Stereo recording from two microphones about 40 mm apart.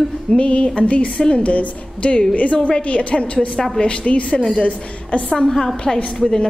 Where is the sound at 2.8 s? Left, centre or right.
Left.